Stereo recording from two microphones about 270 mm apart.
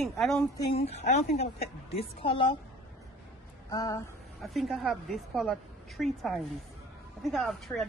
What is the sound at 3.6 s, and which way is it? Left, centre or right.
Speech, centre.